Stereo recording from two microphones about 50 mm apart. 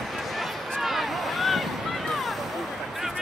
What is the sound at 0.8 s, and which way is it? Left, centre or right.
Boat, centre.